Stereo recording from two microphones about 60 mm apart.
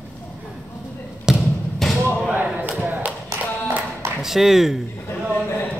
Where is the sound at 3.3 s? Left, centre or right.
Right.